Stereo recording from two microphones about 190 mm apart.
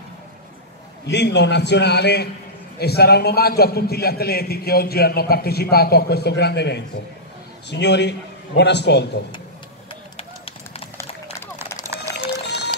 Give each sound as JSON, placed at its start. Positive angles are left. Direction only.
{"t": 1.0, "sound": "a man's voice", "side_deg": 65}
{"t": 10.1, "sound": "run", "side_deg": 30}
{"t": 11.5, "sound": "run", "side_deg": -15}
{"t": 12.2, "sound": "music", "side_deg": 60}